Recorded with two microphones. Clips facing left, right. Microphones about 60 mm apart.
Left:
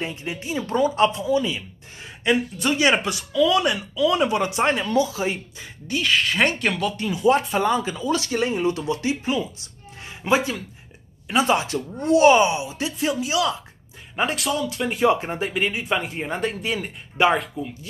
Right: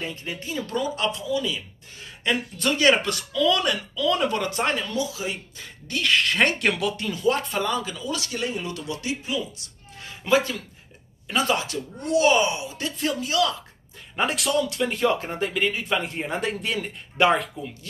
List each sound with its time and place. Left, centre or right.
0.0 s speech: centre
2.2 s speech: centre; by 5.4 s left
5.6 s speech: centre
7.1 s speech: centre
10.0 s speech: left
12.9 s speech: centre
14.1 s speech: centre
15.0 s speech: centre